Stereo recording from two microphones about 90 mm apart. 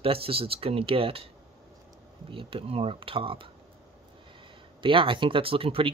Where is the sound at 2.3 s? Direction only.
80° right.